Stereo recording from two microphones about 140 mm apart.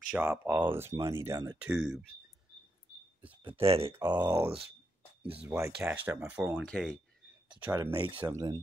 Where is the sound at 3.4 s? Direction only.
40° right (ahead or behind).